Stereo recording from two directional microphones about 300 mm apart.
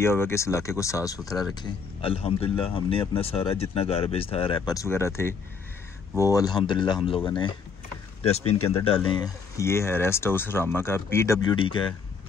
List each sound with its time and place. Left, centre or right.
0.0 s speech: centre